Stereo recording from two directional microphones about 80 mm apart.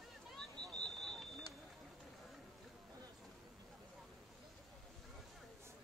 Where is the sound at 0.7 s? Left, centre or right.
Centre.